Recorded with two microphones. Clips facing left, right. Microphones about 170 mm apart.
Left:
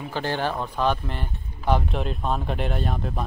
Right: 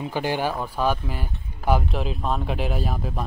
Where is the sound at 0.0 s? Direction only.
15° right (ahead or behind).